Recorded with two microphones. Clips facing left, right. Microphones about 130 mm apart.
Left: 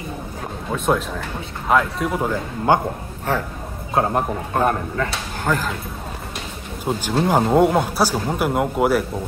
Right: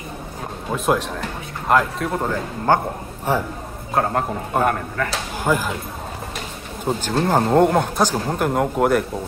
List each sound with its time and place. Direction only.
0.7 s speech: centre (ahead or behind)
3.3 s speech: 10° right (ahead or behind)
3.9 s speech: 15° left (ahead or behind)
5.4 s speech: 10° right (ahead or behind)
6.8 s speech: 10° left (ahead or behind)